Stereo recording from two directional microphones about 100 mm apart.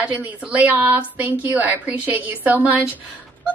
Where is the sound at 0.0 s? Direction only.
15° right (ahead or behind).